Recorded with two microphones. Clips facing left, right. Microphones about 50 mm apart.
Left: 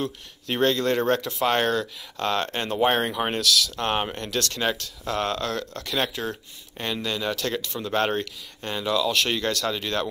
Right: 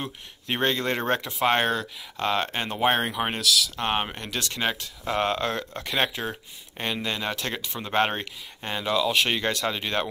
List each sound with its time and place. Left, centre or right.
0.0 s speech: right